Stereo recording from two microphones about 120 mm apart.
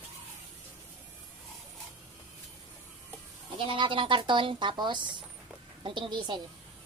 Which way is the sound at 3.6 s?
45° right (ahead or behind).